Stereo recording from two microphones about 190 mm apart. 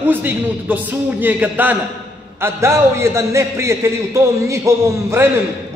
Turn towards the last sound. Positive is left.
turn(degrees=-15)  # may be behind; listen again after turning